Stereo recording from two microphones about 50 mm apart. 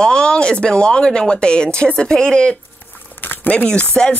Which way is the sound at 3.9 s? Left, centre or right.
Left.